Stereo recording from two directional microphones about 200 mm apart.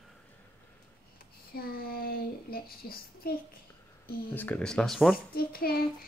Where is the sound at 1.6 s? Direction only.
50° left (ahead or behind).